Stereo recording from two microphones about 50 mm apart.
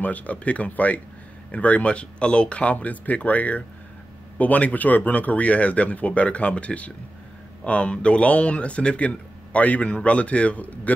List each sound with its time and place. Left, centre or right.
0.0 s speech: left